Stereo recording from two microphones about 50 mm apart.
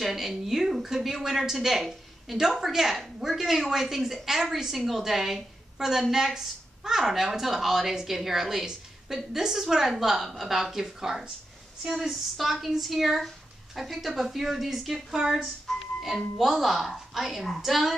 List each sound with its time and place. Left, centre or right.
0.0 s a woman's voice: centre
15.7 s music: centre
16.3 s speech: centre